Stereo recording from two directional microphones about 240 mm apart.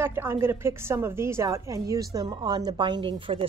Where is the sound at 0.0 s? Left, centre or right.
Centre.